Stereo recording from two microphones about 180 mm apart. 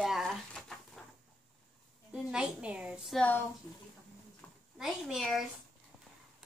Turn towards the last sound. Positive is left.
turn(degrees=0)  # may be behind; listen again after turning